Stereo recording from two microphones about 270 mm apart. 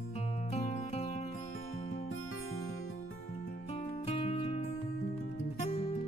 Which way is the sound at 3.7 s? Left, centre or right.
Left.